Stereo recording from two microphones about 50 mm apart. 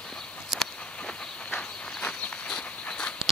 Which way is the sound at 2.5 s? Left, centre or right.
Centre.